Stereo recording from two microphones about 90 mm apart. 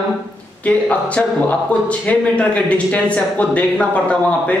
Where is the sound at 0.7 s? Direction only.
15° left (ahead or behind).